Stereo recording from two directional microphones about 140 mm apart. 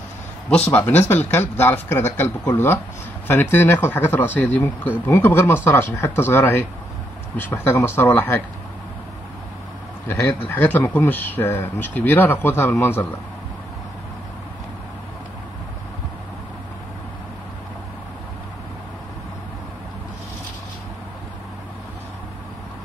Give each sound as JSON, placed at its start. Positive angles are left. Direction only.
{"t": 0.7, "sound": "speech", "side_deg": 15}
{"t": 10.0, "sound": "speech", "side_deg": 15}